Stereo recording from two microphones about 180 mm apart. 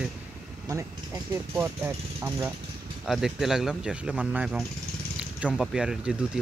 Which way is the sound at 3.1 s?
Centre (ahead or behind).